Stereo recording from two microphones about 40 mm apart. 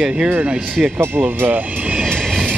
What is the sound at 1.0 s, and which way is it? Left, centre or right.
Speech, right.